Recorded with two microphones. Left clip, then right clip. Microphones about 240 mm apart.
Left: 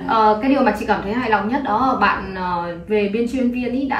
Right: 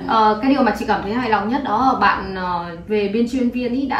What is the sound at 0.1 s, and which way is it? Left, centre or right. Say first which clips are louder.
A woman's voice: even; centre.